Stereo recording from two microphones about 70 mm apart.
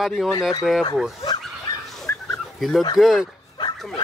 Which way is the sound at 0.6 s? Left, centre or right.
Centre.